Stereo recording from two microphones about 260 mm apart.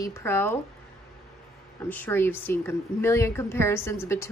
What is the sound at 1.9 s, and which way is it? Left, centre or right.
A woman's voice, centre.